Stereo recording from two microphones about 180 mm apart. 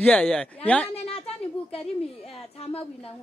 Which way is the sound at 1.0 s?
35° left (ahead or behind).